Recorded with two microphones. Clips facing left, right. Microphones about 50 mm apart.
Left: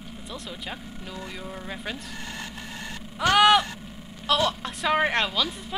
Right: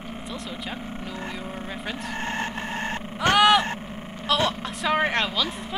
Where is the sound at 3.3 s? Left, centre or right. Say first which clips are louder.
Even; centre.